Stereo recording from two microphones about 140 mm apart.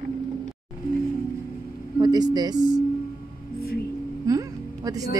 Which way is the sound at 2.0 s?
30° right (ahead or behind).